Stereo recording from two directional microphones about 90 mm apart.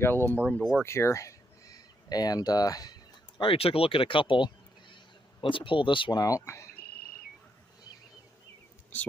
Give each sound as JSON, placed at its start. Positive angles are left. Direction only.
{"t": 0.0, "sound": "speech", "side_deg": 25}
{"t": 0.5, "sound": "speech", "side_deg": 5}
{"t": 0.8, "sound": "speech", "side_deg": 30}
{"t": 3.3, "sound": "speech", "side_deg": 85}
{"t": 6.1, "sound": "speech", "side_deg": 40}